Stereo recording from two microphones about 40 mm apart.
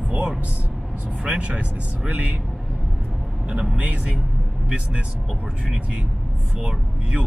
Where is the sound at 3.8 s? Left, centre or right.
Right.